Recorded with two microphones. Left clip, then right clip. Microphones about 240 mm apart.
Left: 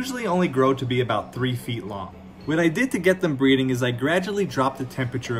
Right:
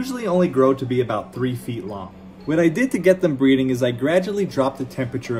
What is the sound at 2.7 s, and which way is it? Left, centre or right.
Speech, centre.